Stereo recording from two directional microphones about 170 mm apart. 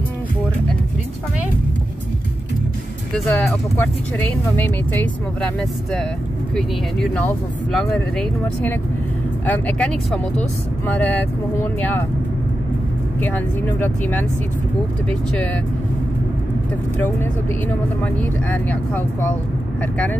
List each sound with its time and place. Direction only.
3.3 s speech: 10° left (ahead or behind)
6.5 s speech: 5° left (ahead or behind)
13.2 s speech: 10° left (ahead or behind)
18.0 s speech: 10° left (ahead or behind)